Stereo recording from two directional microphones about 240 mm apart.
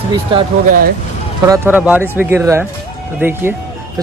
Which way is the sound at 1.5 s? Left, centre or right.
Centre.